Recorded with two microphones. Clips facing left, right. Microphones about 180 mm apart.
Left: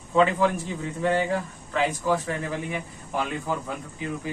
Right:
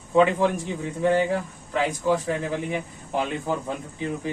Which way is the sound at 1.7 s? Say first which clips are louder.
Right 1 dB; 15° right (ahead or behind).